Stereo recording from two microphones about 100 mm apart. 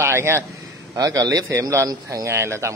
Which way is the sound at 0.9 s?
40° right (ahead or behind).